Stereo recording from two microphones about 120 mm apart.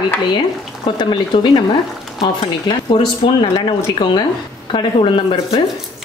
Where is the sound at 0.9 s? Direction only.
40° left (ahead or behind).